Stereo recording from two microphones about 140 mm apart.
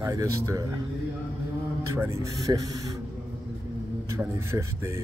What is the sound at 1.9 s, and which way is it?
Speech, 20° right (ahead or behind).